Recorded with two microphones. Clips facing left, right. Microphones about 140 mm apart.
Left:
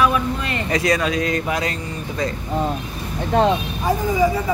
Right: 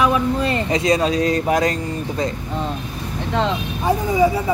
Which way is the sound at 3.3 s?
50° left (ahead or behind).